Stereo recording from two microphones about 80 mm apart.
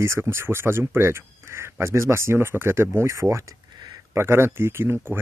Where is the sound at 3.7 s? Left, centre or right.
Right.